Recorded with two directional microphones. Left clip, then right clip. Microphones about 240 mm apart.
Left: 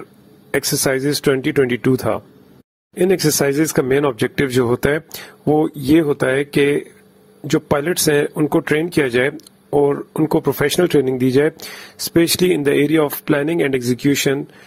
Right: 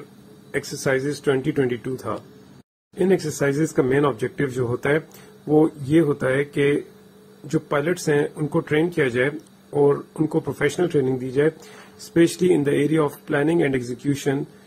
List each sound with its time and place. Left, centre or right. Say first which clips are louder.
0.5 s speech: left 5 dB; left